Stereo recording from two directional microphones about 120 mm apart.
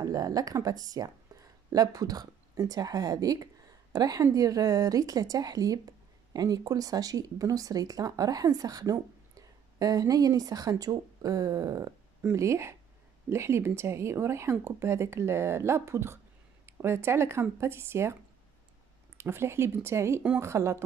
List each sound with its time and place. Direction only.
0.0 s a woman's voice: 30° right (ahead or behind)
19.1 s a woman's voice: 20° right (ahead or behind)